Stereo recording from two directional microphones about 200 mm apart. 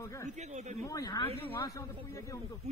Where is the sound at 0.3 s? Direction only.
35° right (ahead or behind).